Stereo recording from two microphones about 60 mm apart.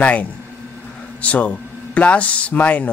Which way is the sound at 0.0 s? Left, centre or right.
Left.